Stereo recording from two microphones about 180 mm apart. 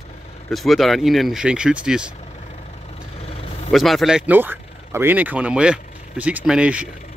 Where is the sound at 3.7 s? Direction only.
Centre (ahead or behind).